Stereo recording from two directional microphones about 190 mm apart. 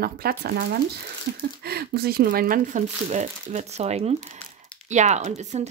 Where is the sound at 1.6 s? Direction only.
55° right (ahead or behind).